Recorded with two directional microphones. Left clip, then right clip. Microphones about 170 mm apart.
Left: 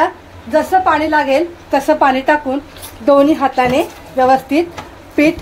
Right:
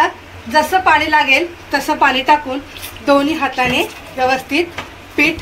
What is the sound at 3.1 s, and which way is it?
A woman's voice, 70° left (ahead or behind).